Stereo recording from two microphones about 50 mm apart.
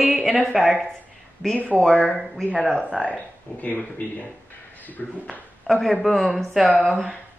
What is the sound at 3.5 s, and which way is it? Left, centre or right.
Speech, left.